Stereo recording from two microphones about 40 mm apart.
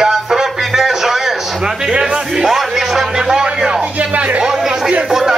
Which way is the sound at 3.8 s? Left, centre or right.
Right.